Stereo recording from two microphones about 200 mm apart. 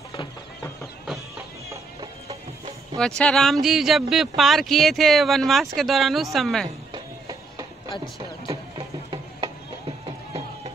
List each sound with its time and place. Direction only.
3.2 s speech: 5° left (ahead or behind)
6.9 s music: 15° right (ahead or behind)
8.5 s a sound: 25° right (ahead or behind)